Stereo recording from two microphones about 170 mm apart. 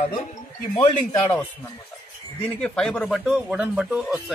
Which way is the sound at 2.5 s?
5° left (ahead or behind).